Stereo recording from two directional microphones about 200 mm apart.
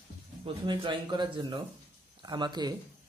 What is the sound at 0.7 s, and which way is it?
Speech, 20° right (ahead or behind).